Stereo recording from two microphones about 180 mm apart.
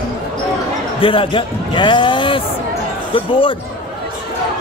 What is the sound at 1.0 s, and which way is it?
A man's voice, 30° left (ahead or behind).